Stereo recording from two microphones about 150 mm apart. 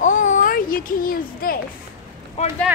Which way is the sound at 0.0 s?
55° left (ahead or behind).